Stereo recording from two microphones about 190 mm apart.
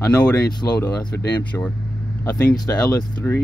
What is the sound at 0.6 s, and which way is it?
Speech, 15° left (ahead or behind).